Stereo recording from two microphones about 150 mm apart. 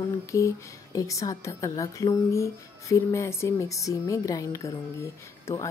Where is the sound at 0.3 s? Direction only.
20° left (ahead or behind).